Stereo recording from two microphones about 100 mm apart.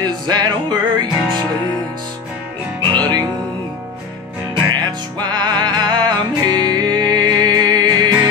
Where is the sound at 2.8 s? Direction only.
45° right (ahead or behind).